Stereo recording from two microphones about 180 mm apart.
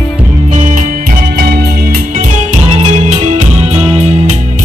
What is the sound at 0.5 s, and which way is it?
Music, 45° right (ahead or behind).